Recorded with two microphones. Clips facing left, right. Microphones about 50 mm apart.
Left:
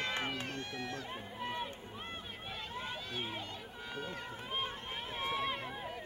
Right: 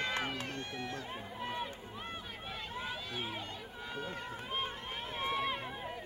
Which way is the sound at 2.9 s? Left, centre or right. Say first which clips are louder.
Right 1 dB; centre.